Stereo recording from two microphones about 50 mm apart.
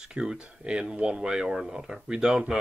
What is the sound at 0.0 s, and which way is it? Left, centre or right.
Speech, centre.